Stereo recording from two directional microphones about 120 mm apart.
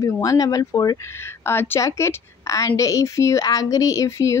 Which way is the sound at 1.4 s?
20° left (ahead or behind).